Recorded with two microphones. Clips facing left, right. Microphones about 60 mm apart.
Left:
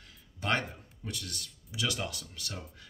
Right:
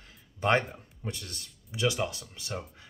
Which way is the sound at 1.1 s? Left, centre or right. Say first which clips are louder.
Right 2 dB; right.